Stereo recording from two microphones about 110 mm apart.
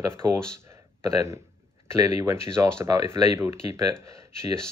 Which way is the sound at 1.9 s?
30° right (ahead or behind).